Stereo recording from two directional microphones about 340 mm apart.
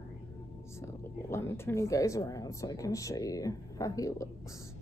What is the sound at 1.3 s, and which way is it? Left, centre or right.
Speech, centre.